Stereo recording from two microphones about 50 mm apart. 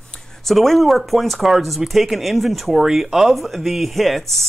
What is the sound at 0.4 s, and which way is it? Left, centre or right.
Speech, centre.